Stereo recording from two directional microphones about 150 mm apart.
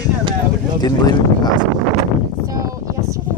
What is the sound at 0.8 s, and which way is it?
Speech, 25° left (ahead or behind).